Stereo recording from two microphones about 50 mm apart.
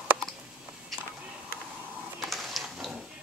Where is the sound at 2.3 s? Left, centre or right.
Centre.